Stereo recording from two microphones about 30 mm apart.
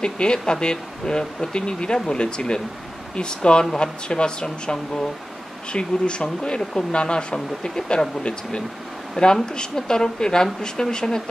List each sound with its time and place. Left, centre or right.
0.0 s speech: left